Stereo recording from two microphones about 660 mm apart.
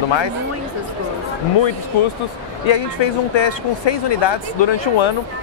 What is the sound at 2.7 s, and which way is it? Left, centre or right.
Speech, left.